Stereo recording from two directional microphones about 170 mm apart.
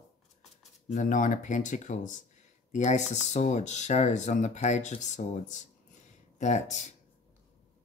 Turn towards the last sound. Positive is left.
turn(degrees=45)  # may be behind; listen again after turning